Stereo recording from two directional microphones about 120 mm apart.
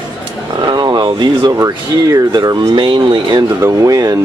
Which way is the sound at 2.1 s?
35° right (ahead or behind).